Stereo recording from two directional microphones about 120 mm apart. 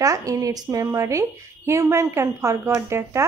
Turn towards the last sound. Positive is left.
turn(degrees=-20)  # may be behind; listen again after turning